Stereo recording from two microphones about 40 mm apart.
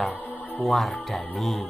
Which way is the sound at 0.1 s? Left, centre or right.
Left.